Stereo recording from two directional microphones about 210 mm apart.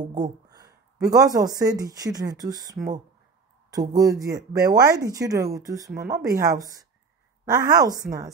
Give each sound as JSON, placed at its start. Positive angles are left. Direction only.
{"t": 0.0, "sound": "speech", "side_deg": -20}